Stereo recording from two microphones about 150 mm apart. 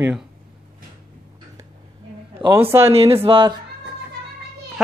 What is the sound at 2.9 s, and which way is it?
Speech, 40° right (ahead or behind).